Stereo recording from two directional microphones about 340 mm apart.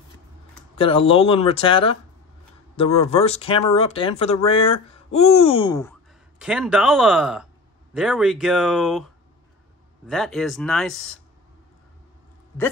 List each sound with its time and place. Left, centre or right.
0.7 s speech: centre
6.4 s speech: centre